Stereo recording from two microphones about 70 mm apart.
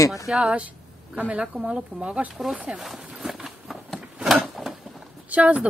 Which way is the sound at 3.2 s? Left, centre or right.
Centre.